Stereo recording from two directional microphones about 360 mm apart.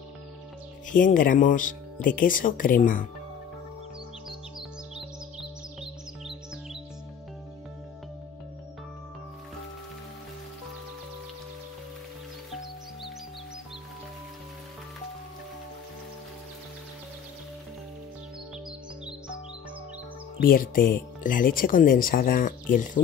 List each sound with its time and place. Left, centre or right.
0.8 s speech: left
4.3 s music: centre
20.3 s music: left
20.7 s speech: left